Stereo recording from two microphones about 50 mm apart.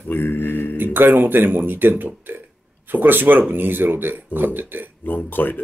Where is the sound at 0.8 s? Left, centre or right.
Right.